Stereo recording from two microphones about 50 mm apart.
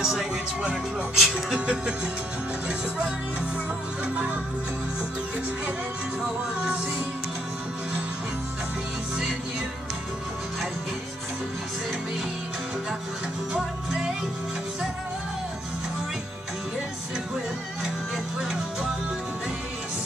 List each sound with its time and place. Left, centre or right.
0.0 s music: centre
18.4 s music: centre